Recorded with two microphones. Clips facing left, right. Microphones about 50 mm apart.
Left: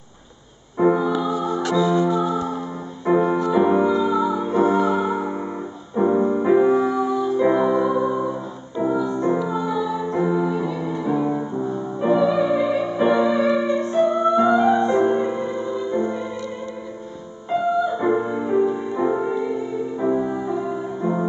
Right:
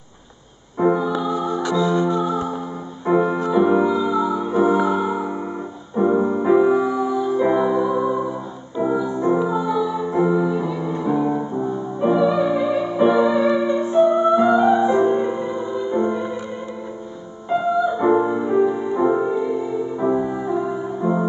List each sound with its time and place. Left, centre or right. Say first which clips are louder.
0.7 s music: even; centre
15.1 s music: right 1 dB; centre
17.5 s music: right 1 dB; centre